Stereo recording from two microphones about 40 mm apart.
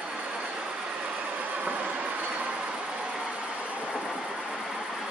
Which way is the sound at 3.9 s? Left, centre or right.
Centre.